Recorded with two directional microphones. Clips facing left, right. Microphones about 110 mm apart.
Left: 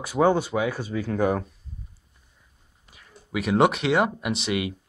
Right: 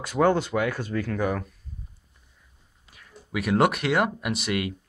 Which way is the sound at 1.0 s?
30° left (ahead or behind).